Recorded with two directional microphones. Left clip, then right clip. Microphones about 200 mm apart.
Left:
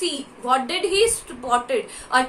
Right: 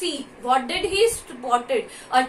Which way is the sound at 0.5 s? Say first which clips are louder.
Left 1 dB; 25° left (ahead or behind).